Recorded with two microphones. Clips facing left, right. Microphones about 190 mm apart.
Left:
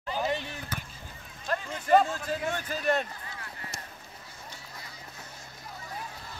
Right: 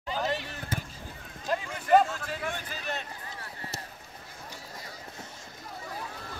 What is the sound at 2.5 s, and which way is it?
Speech, 50° left (ahead or behind).